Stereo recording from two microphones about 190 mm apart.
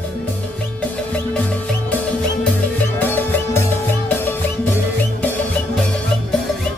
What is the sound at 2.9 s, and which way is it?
Music, 10° left (ahead or behind).